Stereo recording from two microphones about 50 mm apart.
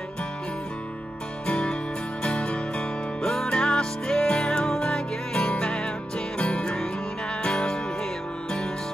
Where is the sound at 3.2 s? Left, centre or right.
Centre.